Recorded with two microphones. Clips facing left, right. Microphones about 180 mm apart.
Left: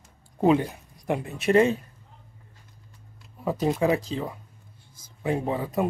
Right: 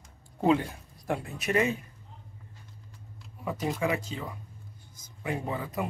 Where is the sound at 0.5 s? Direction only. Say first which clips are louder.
Left 3 dB; 20° left (ahead or behind).